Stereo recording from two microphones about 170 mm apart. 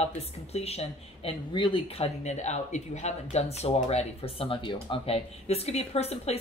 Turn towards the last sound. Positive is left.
turn(degrees=40)  # may be behind; listen again after turning